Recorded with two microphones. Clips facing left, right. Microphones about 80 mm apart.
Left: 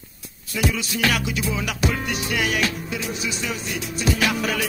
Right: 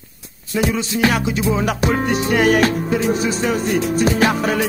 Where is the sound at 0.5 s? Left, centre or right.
Right.